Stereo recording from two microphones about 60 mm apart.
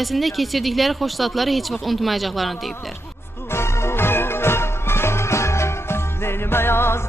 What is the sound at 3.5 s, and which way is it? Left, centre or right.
Music, left.